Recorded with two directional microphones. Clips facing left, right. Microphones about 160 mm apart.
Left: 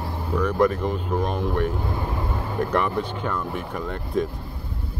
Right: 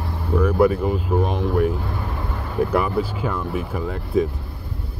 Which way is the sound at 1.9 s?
20° left (ahead or behind).